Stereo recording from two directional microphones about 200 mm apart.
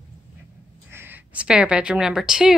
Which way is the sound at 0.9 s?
10° right (ahead or behind).